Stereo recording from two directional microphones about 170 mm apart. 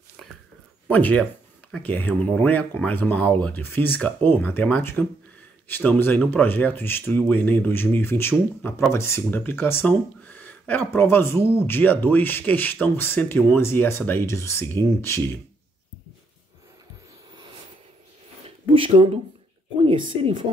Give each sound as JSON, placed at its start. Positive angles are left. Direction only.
{"t": 0.8, "sound": "speech", "side_deg": 10}
{"t": 18.7, "sound": "speech", "side_deg": -30}